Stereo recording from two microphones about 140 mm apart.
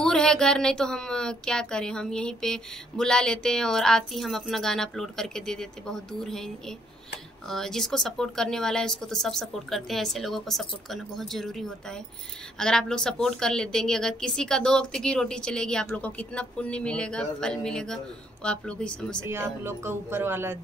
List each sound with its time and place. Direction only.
0.0 s a woman's voice: 5° left (ahead or behind)
19.2 s speech: 15° right (ahead or behind)